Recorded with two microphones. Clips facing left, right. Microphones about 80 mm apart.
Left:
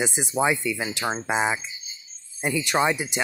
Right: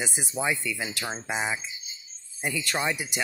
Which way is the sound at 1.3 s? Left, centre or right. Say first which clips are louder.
Left 5 dB; left.